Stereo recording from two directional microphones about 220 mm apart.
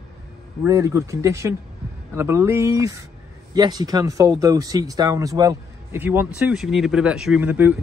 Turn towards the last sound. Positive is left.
turn(degrees=-10)  # may be behind; listen again after turning